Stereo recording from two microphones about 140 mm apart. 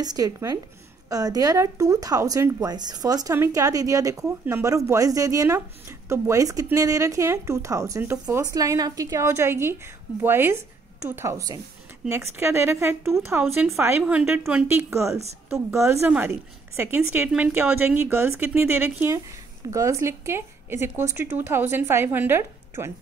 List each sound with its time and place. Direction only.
0.0 s speech: 25° right (ahead or behind)